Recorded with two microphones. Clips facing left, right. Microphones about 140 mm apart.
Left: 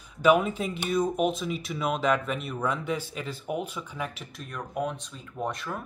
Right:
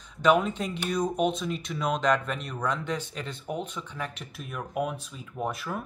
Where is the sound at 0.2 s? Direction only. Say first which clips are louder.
Left 1 dB; 5° left (ahead or behind).